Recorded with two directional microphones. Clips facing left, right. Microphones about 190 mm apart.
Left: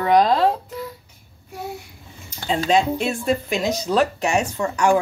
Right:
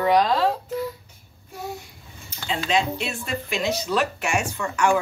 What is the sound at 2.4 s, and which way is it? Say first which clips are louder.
Speech: left 5 dB; 40° left (ahead or behind).